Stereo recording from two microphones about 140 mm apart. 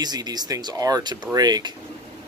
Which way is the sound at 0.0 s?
30° right (ahead or behind).